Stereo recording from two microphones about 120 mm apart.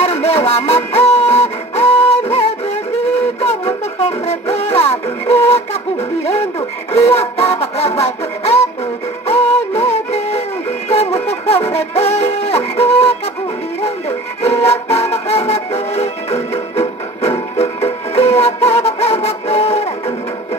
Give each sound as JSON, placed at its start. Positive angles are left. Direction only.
{"t": 0.0, "sound": "a sound", "side_deg": 60}
{"t": 0.9, "sound": "music", "side_deg": 60}
{"t": 14.4, "sound": "music", "side_deg": 60}